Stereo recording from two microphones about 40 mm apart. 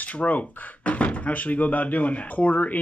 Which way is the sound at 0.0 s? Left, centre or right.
Left.